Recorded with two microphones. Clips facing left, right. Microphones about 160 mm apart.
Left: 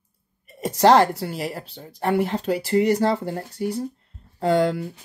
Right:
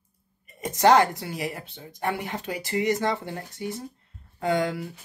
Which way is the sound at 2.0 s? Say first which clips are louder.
Left 8 dB; 40° left (ahead or behind).